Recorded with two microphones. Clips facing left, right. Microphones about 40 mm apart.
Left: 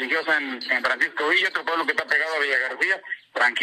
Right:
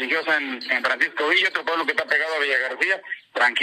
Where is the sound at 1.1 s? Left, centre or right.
Right.